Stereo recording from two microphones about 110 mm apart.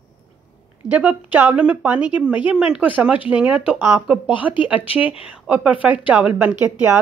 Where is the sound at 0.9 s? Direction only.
15° right (ahead or behind).